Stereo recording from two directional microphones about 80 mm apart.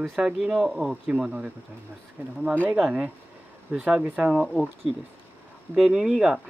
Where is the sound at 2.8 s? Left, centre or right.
Centre.